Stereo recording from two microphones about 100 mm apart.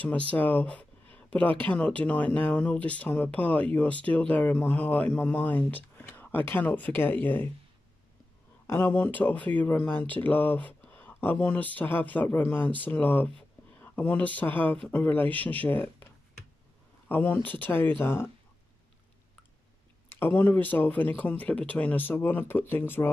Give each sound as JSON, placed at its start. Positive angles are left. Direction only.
{"t": 0.0, "sound": "speech", "side_deg": 15}
{"t": 8.6, "sound": "speech", "side_deg": 20}
{"t": 17.1, "sound": "speech", "side_deg": 15}
{"t": 20.2, "sound": "speech", "side_deg": 20}